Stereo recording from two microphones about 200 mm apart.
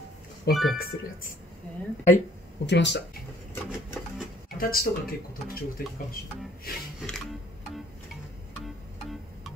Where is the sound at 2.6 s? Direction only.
60° left (ahead or behind).